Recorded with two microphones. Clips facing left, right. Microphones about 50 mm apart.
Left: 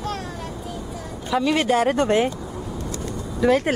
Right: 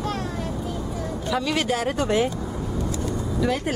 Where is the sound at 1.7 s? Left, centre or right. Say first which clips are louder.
Left 5 dB; left.